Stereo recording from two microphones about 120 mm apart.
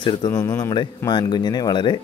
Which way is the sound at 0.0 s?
35° left (ahead or behind).